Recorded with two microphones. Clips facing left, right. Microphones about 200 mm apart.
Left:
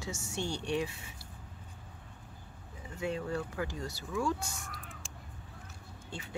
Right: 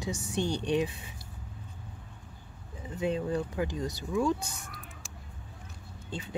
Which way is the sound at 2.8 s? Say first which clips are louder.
Right 5 dB; 20° right (ahead or behind).